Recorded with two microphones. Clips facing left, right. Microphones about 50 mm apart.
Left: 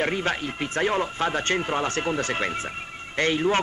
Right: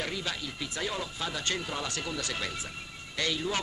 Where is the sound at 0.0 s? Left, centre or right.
Left.